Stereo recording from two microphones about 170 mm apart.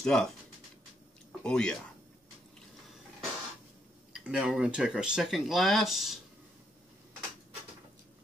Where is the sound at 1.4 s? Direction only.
5° left (ahead or behind).